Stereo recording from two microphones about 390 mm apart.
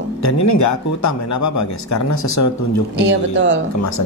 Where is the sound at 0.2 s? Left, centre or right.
Left.